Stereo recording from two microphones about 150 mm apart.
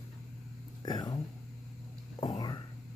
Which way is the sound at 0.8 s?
30° left (ahead or behind).